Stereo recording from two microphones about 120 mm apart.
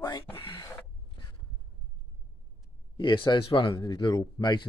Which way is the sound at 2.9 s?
40° left (ahead or behind).